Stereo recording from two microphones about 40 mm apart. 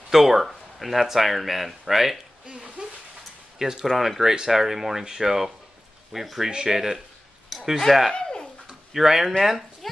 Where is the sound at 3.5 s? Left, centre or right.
Centre.